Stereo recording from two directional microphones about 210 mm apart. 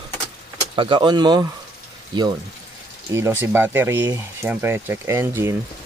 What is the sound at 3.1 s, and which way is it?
Speech, 10° right (ahead or behind).